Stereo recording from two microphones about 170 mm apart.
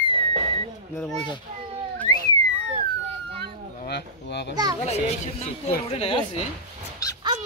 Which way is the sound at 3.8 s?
70° left (ahead or behind).